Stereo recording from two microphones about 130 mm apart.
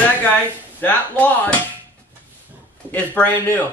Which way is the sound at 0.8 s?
10° left (ahead or behind).